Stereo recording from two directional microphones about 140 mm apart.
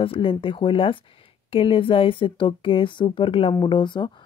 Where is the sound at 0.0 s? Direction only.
40° left (ahead or behind).